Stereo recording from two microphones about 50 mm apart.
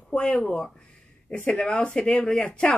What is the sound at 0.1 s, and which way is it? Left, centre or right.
A woman's voice, left.